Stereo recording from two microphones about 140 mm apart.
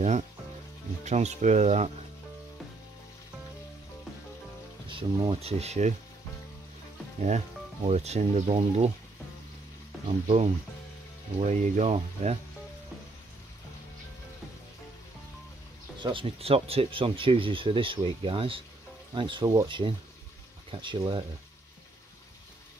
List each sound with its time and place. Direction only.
1.0 s speech: 55° right (ahead or behind)
4.8 s speech: 35° right (ahead or behind); by 5.9 s 55° right (ahead or behind)
7.2 s speech: 55° right (ahead or behind)
10.0 s speech: 45° right (ahead or behind)
11.3 s speech: 60° right (ahead or behind)
16.0 s speech: 40° right (ahead or behind)